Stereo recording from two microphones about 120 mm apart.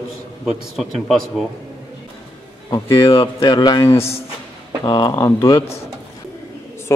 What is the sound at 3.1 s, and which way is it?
A man's voice, 50° left (ahead or behind).